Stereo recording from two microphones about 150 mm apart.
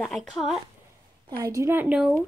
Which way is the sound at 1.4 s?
20° right (ahead or behind).